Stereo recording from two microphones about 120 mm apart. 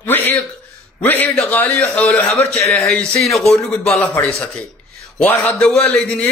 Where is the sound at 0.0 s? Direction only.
15° left (ahead or behind).